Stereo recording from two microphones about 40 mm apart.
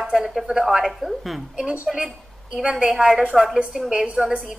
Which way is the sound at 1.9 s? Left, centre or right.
Centre.